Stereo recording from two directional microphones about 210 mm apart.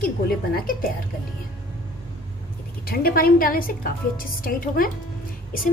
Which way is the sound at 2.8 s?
45° left (ahead or behind).